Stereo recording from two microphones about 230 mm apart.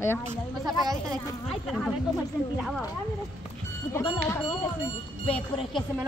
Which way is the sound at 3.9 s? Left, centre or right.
Centre.